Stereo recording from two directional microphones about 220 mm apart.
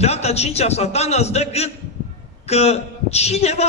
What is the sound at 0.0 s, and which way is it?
A man's voice, 30° left (ahead or behind).